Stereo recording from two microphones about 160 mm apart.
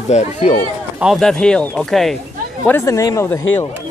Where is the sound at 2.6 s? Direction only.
15° left (ahead or behind).